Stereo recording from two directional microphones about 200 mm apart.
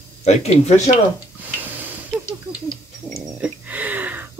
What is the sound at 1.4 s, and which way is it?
Stir, 10° right (ahead or behind).